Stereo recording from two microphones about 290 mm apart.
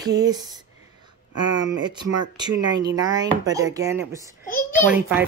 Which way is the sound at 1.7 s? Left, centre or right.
Right.